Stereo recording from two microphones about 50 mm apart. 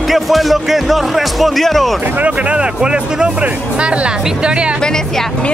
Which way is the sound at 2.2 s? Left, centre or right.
Right.